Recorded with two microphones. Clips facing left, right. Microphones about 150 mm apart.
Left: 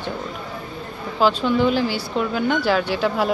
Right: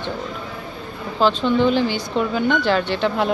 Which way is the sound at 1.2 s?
10° left (ahead or behind).